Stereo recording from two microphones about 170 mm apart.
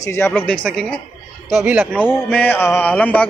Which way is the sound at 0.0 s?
15° left (ahead or behind).